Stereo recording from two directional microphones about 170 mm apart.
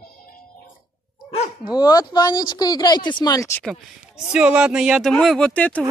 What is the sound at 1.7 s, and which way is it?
Speech, 25° left (ahead or behind).